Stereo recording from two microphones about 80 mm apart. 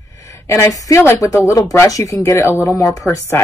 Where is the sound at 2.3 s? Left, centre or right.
Left.